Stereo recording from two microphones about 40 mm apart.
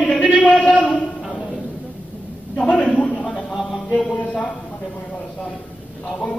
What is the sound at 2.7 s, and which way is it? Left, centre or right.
A man's voice, left.